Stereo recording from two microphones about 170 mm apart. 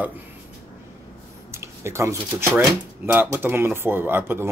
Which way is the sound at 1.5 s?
15° right (ahead or behind).